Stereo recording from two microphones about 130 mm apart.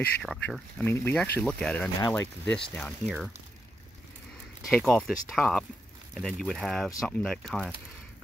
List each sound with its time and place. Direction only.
0.0 s speech: 5° left (ahead or behind)
1.2 s speech: 15° left (ahead or behind)
2.0 s speech: 25° left (ahead or behind)
2.4 s speech: 10° left (ahead or behind)
4.6 s speech: 5° left (ahead or behind)